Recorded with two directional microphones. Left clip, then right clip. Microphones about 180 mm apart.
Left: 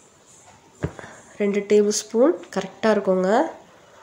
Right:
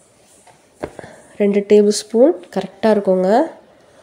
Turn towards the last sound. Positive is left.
turn(degrees=-40)  # may be behind; listen again after turning